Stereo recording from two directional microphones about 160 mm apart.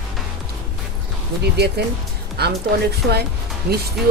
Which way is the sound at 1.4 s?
90° right.